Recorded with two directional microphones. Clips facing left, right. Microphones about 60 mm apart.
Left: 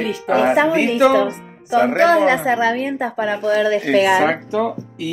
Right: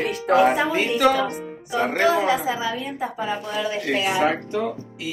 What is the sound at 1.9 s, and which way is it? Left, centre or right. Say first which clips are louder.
A woman's voice: left 4 dB; left.